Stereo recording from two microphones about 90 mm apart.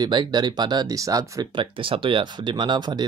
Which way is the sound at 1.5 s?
70° right (ahead or behind).